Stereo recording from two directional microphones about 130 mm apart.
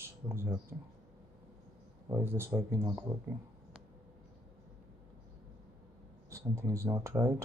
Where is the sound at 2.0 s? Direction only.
20° right (ahead or behind).